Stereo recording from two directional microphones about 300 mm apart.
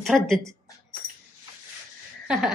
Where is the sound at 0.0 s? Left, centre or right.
Centre.